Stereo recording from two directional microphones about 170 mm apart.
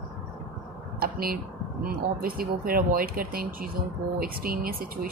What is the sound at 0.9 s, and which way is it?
A woman's voice, 60° right (ahead or behind).